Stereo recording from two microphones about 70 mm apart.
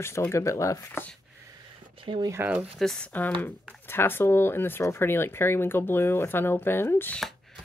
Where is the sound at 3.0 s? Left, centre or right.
Left.